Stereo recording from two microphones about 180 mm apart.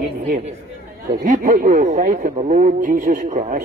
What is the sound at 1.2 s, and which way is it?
A man's voice, 45° right (ahead or behind).